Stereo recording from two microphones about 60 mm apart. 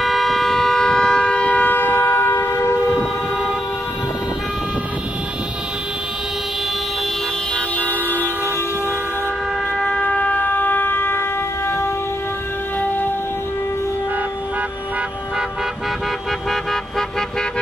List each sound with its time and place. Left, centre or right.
0.0 s vehicle: centre; by 3.0 s left
7.7 s vehicle: left
9.8 s a sound: centre; by 11.9 s left